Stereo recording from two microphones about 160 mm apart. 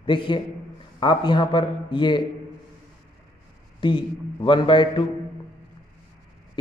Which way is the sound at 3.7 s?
30° left (ahead or behind).